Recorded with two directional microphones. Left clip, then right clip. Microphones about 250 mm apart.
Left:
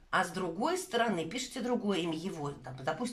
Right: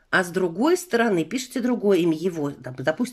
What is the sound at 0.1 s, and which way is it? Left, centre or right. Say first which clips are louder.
Speech: right 10 dB; right.